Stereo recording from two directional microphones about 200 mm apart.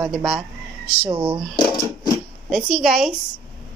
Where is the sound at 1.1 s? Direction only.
20° right (ahead or behind).